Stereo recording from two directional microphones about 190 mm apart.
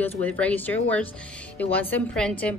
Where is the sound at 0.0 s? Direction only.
10° left (ahead or behind).